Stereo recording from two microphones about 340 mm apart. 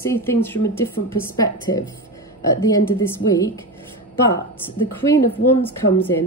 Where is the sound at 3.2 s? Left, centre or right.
Left.